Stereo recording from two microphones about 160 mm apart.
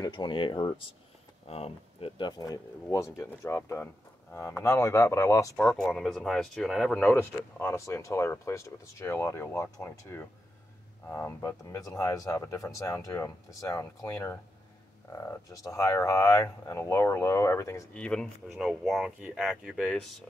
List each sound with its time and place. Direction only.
0.0 s speech: 25° left (ahead or behind)
5.6 s speech: 5° left (ahead or behind)
7.0 s speech: 15° left (ahead or behind)
17.9 s speech: 5° left (ahead or behind)